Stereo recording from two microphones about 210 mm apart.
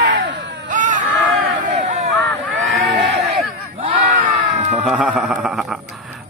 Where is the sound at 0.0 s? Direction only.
55° right (ahead or behind).